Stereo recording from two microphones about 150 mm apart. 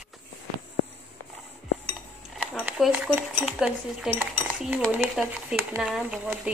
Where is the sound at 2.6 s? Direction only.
5° right (ahead or behind).